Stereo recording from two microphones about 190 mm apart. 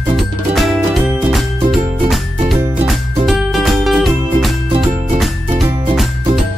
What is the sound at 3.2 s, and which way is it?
Music, centre (ahead or behind).